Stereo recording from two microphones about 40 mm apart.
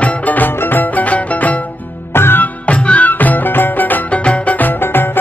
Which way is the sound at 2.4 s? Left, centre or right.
Left.